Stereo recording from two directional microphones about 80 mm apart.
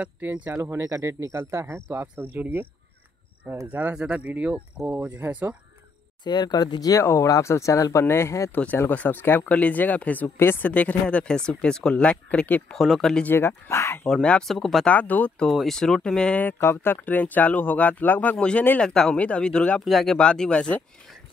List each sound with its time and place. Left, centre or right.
0.0 s speech: centre
0.5 s speech: right
3.7 s speech: centre
6.2 s speech: left
8.9 s speech: left
12.7 s speech: centre
13.2 s speech: left
14.2 s speech: centre
14.5 s speech: centre
14.9 s speech: centre
15.5 s speech: centre
16.3 s speech: left
19.8 s speech: centre
20.2 s speech: centre